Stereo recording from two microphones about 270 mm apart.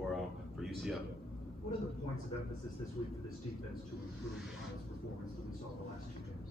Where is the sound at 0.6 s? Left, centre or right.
Centre.